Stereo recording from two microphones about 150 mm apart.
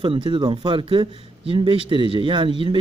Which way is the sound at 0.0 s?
35° right (ahead or behind).